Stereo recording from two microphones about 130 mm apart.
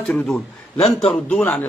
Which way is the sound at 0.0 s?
5° left (ahead or behind).